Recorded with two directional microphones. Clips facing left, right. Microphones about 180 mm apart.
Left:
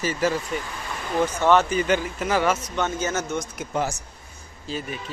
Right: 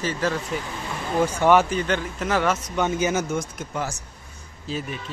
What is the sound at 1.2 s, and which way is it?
Speech, 10° right (ahead or behind).